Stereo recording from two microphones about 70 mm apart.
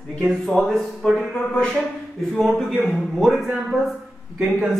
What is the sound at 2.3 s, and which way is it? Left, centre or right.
Speech, centre.